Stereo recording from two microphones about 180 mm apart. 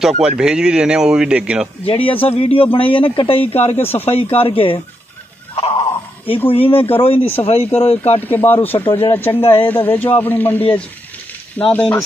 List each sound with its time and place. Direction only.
0.4 s speech: 5° right (ahead or behind)
1.9 s speech: 30° left (ahead or behind)
3.8 s speech: 10° left (ahead or behind)
4.1 s speech: 30° left (ahead or behind)
5.5 s a sound: 30° left (ahead or behind)
6.5 s speech: 30° left (ahead or behind)
7.2 s speech: 10° left (ahead or behind)
7.4 s speech: 35° left (ahead or behind)
8.3 s speech: 10° left (ahead or behind)
11.7 s speech: 10° left (ahead or behind)